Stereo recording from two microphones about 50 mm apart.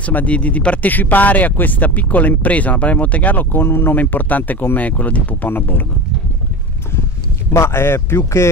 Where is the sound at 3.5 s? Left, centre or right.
Left.